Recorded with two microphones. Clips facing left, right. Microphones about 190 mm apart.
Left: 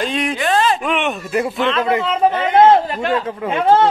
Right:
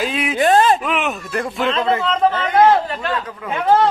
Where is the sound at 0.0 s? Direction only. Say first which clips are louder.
Left 1 dB; 5° right (ahead or behind).